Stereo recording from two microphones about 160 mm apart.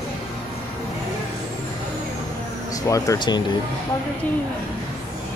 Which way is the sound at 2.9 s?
20° left (ahead or behind).